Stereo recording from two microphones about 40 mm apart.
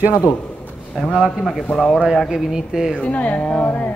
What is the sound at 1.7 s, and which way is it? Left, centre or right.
Speech, centre.